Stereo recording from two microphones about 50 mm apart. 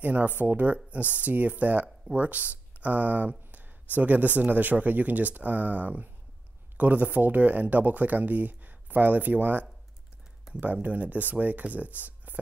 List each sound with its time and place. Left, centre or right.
0.0 s speech: right